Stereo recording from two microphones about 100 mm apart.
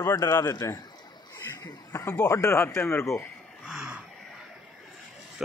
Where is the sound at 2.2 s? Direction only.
30° left (ahead or behind).